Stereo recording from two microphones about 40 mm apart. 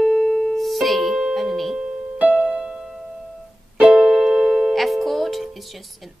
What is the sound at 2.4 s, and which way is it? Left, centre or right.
Music, right.